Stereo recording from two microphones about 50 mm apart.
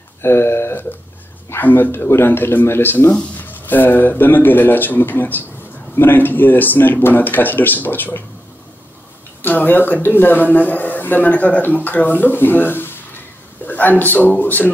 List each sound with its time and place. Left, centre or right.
0.2 s a sound: left
1.6 s speech: left
3.3 s speech: left
9.4 s a man's voice: left